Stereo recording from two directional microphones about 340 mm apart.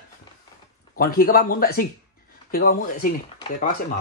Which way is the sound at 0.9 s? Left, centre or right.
Left.